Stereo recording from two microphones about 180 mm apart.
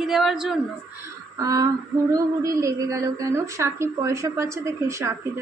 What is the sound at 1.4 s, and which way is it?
Female singing, 20° right (ahead or behind).